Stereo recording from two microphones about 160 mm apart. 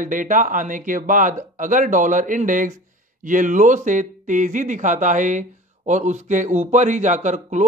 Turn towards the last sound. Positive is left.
turn(degrees=-50)  # may be behind; listen again after turning